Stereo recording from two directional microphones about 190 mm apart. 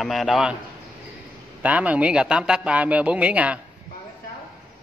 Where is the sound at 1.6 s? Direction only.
5° right (ahead or behind).